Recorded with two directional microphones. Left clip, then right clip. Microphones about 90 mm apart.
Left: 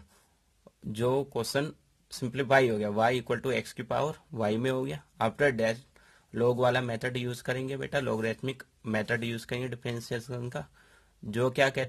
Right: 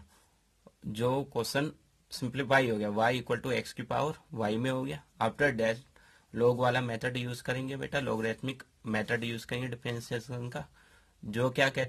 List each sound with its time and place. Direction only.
0.9 s speech: 35° left (ahead or behind)